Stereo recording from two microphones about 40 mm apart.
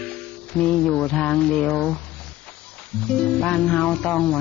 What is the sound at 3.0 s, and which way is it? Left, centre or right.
Music, left.